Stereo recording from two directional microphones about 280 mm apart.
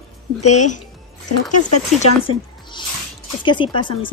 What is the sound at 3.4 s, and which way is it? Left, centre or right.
Speech, centre.